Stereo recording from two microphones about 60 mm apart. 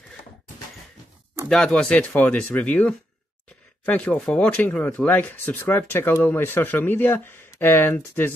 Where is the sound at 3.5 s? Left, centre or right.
Left.